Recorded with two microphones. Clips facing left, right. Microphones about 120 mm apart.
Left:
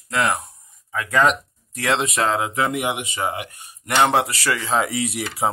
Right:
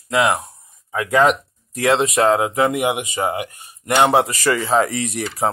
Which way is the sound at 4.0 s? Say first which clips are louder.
Right 3 dB; 10° right (ahead or behind).